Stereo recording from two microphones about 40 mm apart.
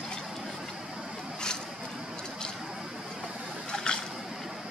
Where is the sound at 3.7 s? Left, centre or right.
Left.